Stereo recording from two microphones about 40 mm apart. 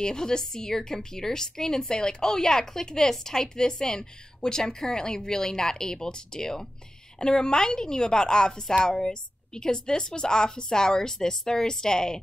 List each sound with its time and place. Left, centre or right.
0.0 s a woman's voice: centre